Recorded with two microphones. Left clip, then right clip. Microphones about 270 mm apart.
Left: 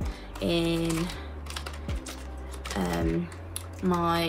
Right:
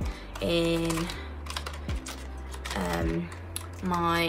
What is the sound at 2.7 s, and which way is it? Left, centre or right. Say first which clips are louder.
Speech: left 1 dB; centre.